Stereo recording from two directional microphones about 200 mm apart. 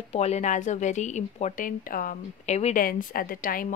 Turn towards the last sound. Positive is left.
turn(degrees=45)  # may be behind; listen again after turning